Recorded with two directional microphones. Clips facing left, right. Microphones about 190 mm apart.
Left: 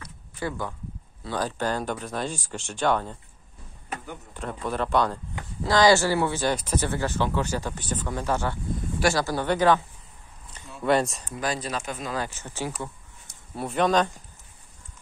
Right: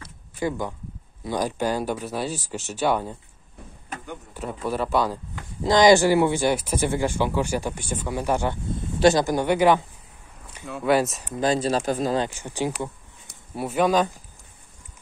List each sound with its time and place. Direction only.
0.4 s speech: 15° right (ahead or behind)
4.3 s speech: 5° right (ahead or behind)
5.6 s speech: 15° right (ahead or behind)
11.3 s speech: 25° right (ahead or behind)
12.3 s speech: 15° right (ahead or behind)